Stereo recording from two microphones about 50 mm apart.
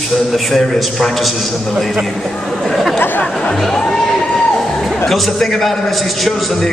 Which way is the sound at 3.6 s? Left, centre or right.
Centre.